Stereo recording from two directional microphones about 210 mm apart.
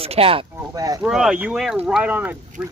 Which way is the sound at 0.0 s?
30° right (ahead or behind).